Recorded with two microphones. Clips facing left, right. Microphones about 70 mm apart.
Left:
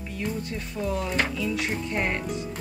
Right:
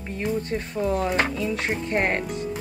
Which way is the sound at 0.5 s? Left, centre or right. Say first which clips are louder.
Right 5 dB; right.